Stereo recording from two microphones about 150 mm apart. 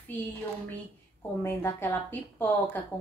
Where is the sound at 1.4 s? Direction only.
15° left (ahead or behind).